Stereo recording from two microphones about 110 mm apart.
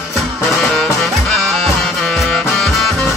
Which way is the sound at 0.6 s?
Centre (ahead or behind).